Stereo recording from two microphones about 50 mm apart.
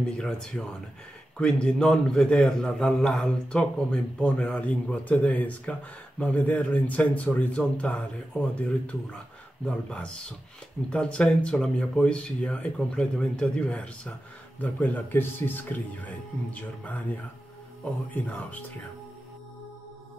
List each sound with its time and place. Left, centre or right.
0.0 s speech: centre
3.1 s speech: centre
3.9 s speech: left
14.6 s speech: left